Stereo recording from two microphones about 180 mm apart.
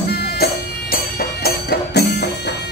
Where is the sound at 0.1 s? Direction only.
60° left (ahead or behind).